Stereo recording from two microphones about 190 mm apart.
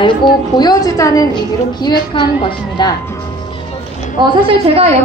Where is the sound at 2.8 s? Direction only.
25° left (ahead or behind).